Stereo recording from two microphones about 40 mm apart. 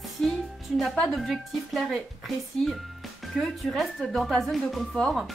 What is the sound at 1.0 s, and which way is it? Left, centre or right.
Speech, centre.